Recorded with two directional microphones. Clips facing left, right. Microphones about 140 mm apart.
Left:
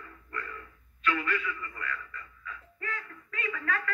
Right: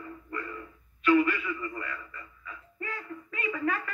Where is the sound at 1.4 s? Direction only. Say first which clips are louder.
Right 3 dB; 25° right (ahead or behind).